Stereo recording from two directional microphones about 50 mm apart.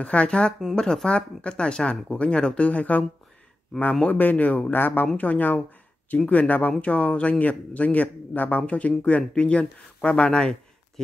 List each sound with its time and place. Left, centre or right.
0.0 s speech: left